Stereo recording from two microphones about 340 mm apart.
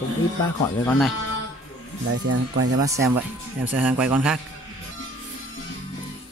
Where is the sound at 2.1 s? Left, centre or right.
Right.